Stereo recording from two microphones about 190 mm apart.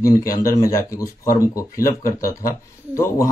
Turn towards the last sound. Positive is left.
turn(degrees=15)  # may be behind; listen again after turning